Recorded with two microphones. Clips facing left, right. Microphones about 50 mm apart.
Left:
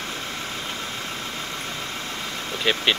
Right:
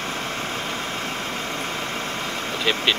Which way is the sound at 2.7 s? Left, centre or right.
Centre.